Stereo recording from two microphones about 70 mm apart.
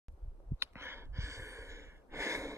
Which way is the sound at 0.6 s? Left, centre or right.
Right.